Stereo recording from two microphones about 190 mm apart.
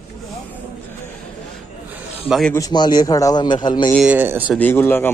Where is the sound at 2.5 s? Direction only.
20° left (ahead or behind).